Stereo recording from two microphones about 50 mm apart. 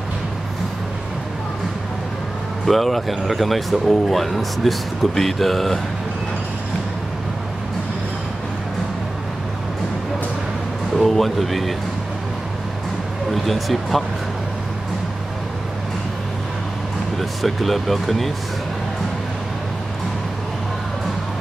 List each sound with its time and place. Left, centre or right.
2.6 s speech: centre
11.0 s speech: centre
13.3 s speech: centre
17.2 s speech: centre